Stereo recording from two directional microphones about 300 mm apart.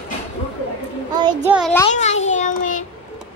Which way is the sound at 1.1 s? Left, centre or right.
Centre.